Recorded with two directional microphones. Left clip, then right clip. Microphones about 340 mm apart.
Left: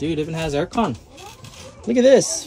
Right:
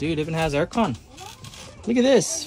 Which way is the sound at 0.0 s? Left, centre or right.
Centre.